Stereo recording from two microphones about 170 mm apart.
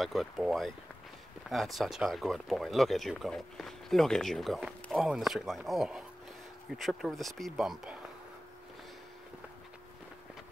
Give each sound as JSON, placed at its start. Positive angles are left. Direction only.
{"t": 0.0, "sound": "speech", "side_deg": 0}